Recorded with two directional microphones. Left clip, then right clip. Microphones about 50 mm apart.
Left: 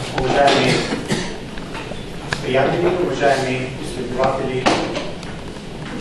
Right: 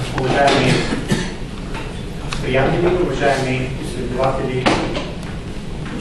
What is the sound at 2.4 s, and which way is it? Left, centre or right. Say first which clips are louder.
A man's voice: right 1 dB; centre.